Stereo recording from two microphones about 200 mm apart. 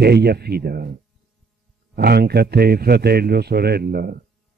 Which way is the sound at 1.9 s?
50° right (ahead or behind).